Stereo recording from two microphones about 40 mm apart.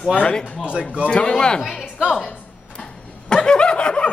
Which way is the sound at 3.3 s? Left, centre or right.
Left.